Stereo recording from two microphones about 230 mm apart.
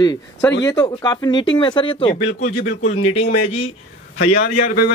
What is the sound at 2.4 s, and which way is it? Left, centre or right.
Speech, left.